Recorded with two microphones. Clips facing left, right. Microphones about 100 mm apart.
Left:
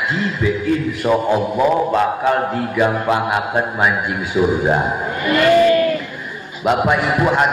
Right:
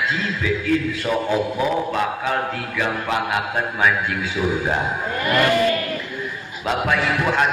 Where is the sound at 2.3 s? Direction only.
20° left (ahead or behind).